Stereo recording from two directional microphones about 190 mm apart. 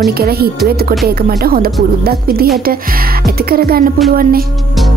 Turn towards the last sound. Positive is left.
turn(degrees=-50)  # may be behind; listen again after turning